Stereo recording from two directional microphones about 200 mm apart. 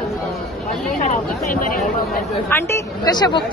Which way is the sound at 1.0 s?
40° left (ahead or behind).